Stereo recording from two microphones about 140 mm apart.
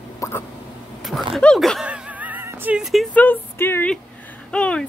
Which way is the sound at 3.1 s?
15° left (ahead or behind).